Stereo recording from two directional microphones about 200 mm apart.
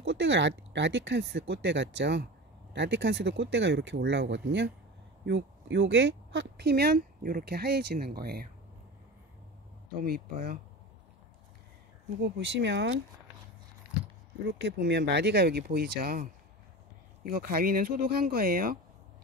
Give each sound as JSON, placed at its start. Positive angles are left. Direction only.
{"t": 0.0, "sound": "speech", "side_deg": -65}
{"t": 10.0, "sound": "speech", "side_deg": -50}
{"t": 12.2, "sound": "speech", "side_deg": -60}
{"t": 14.6, "sound": "speech", "side_deg": -60}
{"t": 17.3, "sound": "speech", "side_deg": -45}